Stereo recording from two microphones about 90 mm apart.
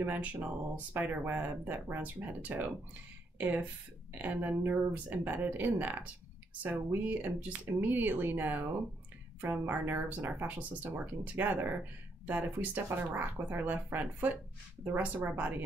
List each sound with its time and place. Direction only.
0.0 s a woman's voice: 20° right (ahead or behind)